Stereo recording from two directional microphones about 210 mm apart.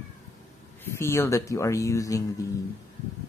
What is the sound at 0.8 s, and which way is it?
Speech, 15° left (ahead or behind).